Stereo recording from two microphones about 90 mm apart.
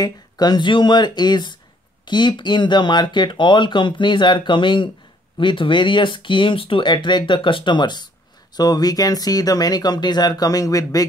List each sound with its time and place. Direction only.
0.0 s speech: 50° left (ahead or behind)